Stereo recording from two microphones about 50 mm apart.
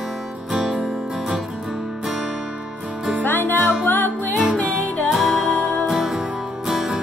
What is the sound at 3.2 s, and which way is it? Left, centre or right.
Music, left.